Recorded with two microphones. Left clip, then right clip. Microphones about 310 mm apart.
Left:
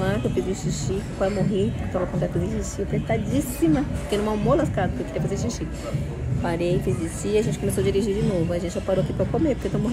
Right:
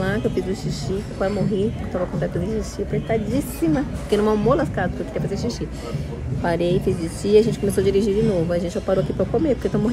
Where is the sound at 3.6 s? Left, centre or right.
Centre.